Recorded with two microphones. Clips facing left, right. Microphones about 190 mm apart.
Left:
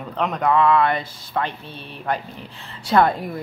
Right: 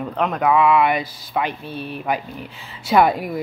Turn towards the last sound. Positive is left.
turn(degrees=-5)  # may be behind; listen again after turning